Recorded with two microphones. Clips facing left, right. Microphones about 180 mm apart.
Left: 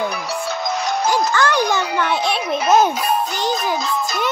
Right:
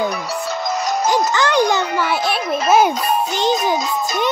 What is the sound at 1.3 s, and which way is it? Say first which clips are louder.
Music: right 1 dB; 20° right (ahead or behind).